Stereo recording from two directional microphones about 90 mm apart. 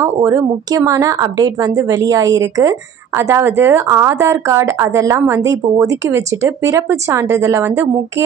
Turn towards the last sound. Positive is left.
turn(degrees=-30)  # may be behind; listen again after turning